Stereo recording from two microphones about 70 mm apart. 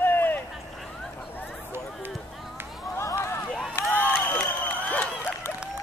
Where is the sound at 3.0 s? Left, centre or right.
Left.